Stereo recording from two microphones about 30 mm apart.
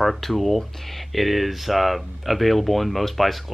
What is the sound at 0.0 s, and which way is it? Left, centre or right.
Speech, centre.